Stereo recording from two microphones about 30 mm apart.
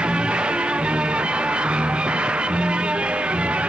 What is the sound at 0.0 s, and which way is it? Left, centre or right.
Music, right.